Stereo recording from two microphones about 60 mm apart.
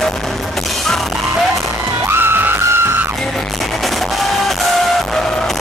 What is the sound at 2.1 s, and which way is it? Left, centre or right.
Music, right.